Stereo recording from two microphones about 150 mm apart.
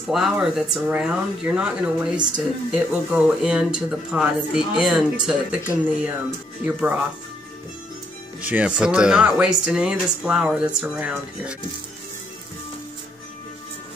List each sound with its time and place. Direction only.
0.1 s speech: 5° right (ahead or behind)
8.4 s speech: 10° right (ahead or behind)